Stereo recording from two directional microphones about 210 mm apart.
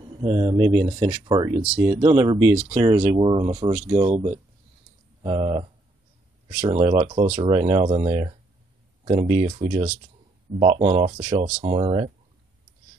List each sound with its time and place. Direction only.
0.2 s speech: 20° right (ahead or behind)